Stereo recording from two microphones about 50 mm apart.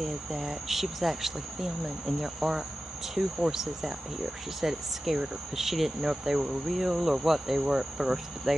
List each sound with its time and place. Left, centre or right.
0.0 s speech: centre